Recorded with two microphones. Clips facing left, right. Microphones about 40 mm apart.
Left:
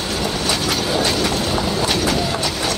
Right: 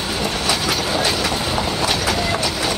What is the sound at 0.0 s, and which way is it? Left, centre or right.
Train, centre.